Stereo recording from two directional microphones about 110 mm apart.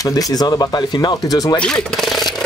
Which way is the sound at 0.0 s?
35° left (ahead or behind).